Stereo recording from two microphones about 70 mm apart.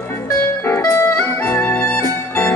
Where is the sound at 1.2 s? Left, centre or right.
Left.